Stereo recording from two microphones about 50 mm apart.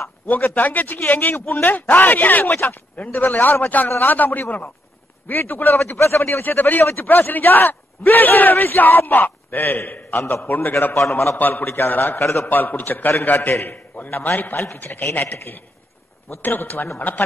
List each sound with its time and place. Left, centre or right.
0.3 s a man's voice: left
5.9 s a man's voice: left
6.4 s a man's voice: left
10.7 s a man's voice: left
11.3 s a man's voice: left
12.2 s a man's voice: left
12.4 s a man's voice: left
16.4 s a man's voice: left